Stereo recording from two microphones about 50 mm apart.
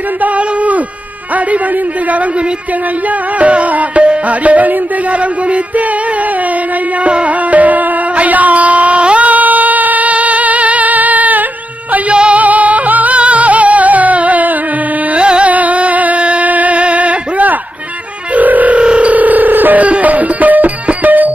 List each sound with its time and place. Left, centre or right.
3.3 s music: right
7.1 s music: right
11.9 s music: right
18.3 s telephone dialing: right